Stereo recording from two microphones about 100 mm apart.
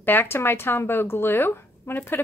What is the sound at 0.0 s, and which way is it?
Speech, 20° left (ahead or behind).